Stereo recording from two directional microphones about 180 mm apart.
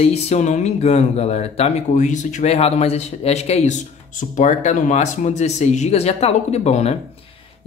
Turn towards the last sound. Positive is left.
turn(degrees=40)  # may be behind; listen again after turning